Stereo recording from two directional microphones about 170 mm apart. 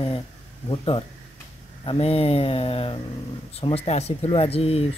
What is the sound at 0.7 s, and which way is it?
Speech, 30° left (ahead or behind).